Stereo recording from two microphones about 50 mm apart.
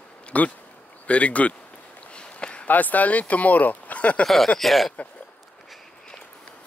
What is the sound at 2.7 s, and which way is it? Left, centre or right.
Speech, left.